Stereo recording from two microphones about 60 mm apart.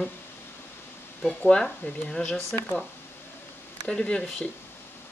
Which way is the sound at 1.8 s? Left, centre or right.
Centre.